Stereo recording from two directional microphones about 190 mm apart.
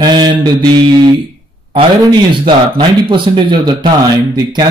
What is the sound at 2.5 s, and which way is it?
Speech, 25° right (ahead or behind).